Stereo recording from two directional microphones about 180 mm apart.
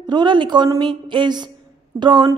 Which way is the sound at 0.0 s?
25° right (ahead or behind).